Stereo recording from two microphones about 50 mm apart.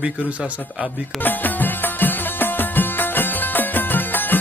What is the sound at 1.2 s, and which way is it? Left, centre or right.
Music, left.